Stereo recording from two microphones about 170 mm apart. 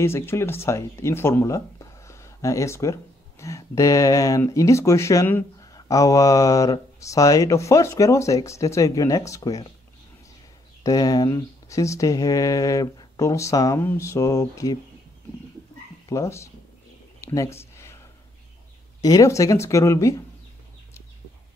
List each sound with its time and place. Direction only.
0.0 s speech: 15° left (ahead or behind)
10.8 s speech: 20° left (ahead or behind)
16.1 s speech: 15° left (ahead or behind)
17.2 s a sound: 20° left (ahead or behind)
19.0 s speech: 20° left (ahead or behind)